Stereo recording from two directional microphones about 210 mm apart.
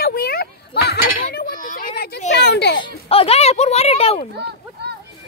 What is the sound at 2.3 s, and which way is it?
Speech, 50° left (ahead or behind).